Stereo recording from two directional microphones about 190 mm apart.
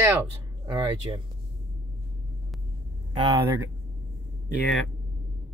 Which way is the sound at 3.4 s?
15° right (ahead or behind).